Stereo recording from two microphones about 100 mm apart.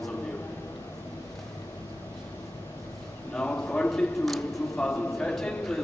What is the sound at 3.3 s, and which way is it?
A man's voice, 10° left (ahead or behind).